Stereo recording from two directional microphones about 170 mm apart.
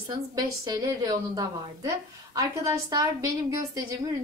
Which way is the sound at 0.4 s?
25° right (ahead or behind).